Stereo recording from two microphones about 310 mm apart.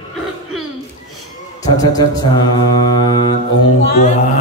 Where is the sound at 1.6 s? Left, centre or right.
Centre.